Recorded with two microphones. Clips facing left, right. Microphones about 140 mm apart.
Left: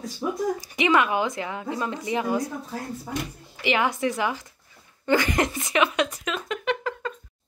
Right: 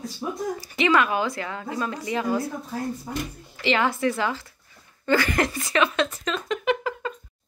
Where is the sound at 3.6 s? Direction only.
15° left (ahead or behind).